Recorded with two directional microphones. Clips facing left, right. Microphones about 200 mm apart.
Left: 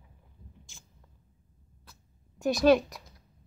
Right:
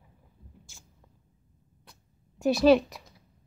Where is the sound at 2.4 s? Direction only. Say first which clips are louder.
Right 2 dB; 5° right (ahead or behind).